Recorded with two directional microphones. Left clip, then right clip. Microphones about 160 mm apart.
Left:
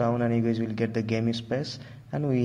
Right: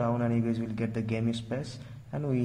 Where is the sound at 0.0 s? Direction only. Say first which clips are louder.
Left 4 dB; 15° left (ahead or behind).